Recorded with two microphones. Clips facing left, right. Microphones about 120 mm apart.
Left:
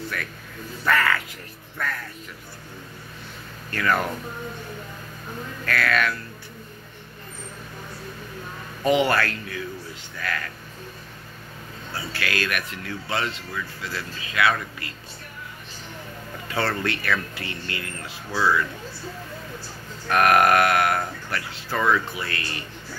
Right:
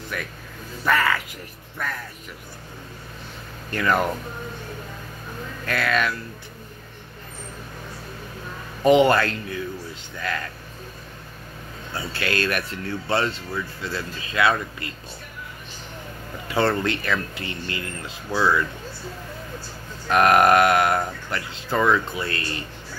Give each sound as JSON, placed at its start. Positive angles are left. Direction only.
{"t": 0.1, "sound": "speech", "side_deg": -20}
{"t": 3.7, "sound": "speech", "side_deg": -20}
{"t": 5.7, "sound": "speech", "side_deg": -20}
{"t": 8.8, "sound": "speech", "side_deg": -25}
{"t": 11.9, "sound": "speech", "side_deg": -25}
{"t": 16.4, "sound": "speech", "side_deg": -20}
{"t": 20.1, "sound": "speech", "side_deg": -20}